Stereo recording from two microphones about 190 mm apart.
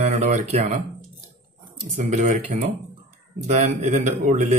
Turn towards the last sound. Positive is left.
turn(degrees=-40)  # may be behind; listen again after turning